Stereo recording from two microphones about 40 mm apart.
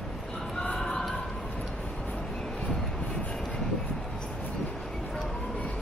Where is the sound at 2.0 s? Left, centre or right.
Centre.